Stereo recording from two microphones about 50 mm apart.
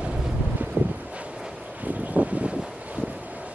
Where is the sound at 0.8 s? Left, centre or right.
Right.